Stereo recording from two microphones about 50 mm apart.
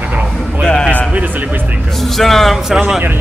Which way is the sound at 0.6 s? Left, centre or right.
Centre.